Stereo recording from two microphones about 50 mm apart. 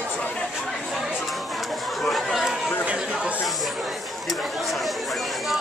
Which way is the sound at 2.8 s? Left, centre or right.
Right.